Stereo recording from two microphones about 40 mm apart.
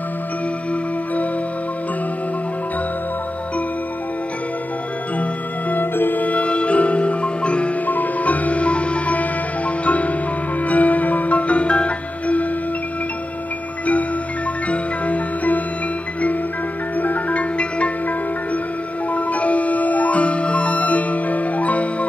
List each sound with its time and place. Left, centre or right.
5.7 s music: left
6.2 s music: left
7.8 s music: left
14.7 s marimba: left
17.0 s music: left
19.1 s music: left